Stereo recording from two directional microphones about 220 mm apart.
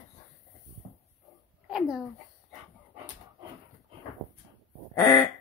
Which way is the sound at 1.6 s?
5° right (ahead or behind).